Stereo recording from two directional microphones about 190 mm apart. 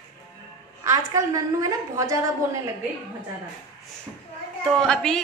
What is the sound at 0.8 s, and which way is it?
A woman's voice, 15° right (ahead or behind).